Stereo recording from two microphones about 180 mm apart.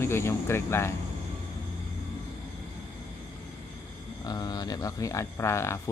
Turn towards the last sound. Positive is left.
turn(degrees=15)  # may be behind; listen again after turning